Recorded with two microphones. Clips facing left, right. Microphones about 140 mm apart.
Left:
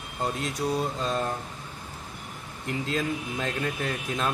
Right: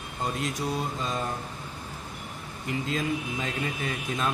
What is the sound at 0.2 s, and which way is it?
Speech, centre (ahead or behind).